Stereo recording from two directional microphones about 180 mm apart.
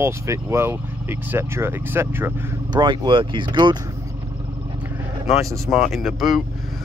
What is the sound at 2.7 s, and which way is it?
Speech, 25° right (ahead or behind).